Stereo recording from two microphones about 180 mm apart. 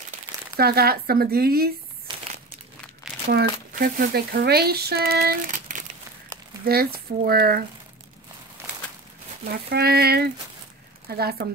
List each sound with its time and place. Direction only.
0.6 s speech: 60° right (ahead or behind)
3.7 s speech: 50° right (ahead or behind)
8.6 s walk: 15° right (ahead or behind)
9.5 s speech: 60° right (ahead or behind)